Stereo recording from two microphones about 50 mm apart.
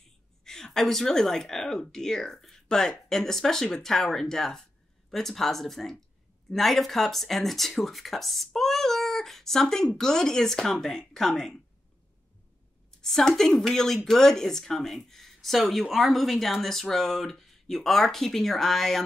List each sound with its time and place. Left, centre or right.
0.4 s a woman's voice: centre
13.0 s a woman's voice: centre